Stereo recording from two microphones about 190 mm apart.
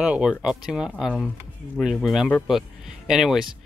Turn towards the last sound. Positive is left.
turn(degrees=0)  # may be behind; listen again after turning